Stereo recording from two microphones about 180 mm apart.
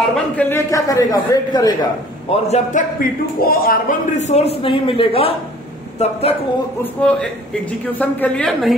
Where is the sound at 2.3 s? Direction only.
40° left (ahead or behind).